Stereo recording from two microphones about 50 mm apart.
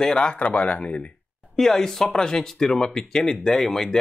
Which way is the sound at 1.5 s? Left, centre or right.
Centre.